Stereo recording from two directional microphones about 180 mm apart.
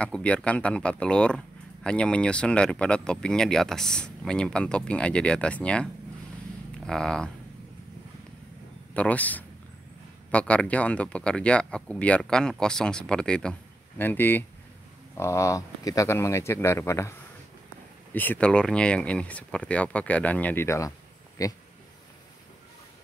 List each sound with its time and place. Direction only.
0.0 s speech: 5° left (ahead or behind)
6.9 s speech: 5° left (ahead or behind)
8.9 s speech: 10° left (ahead or behind)
18.1 s speech: 10° left (ahead or behind)